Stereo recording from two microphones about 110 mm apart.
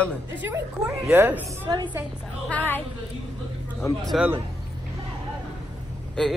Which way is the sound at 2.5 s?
15° left (ahead or behind).